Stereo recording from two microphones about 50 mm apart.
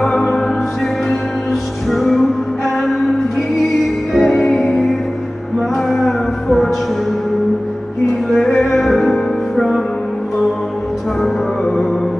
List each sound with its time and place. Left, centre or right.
0.0 s music: centre
1.5 s music: centre
5.9 s music: centre
8.3 s music: centre
11.6 s music: left